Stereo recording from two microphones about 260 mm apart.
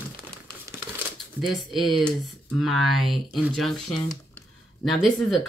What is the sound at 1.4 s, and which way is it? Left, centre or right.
Speech, centre.